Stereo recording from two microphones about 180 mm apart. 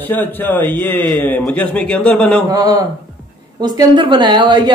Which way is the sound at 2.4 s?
20° right (ahead or behind).